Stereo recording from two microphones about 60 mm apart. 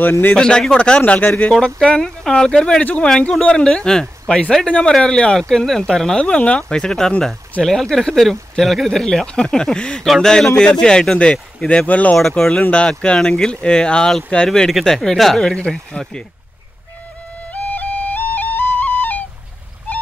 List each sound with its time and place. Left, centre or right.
0.3 s speech: centre
1.8 s a man's voice: centre
4.6 s a man's voice: left
6.2 s a man's voice: centre
11.9 s speech: left
12.2 s a man's voice: centre
14.7 s speech: centre
15.5 s a man's voice: centre
17.5 s music: left